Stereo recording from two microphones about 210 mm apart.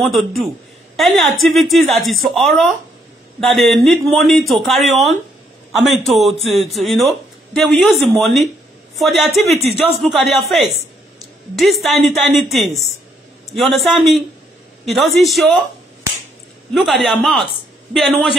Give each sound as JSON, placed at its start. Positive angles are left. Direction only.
{"t": 0.0, "sound": "a man's voice", "side_deg": 0}
{"t": 6.4, "sound": "speech", "side_deg": -30}
{"t": 6.7, "sound": "a man's voice", "side_deg": 0}
{"t": 16.7, "sound": "a man's voice", "side_deg": 0}